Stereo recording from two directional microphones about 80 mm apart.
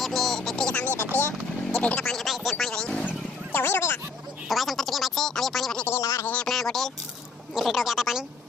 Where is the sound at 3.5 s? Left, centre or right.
Left.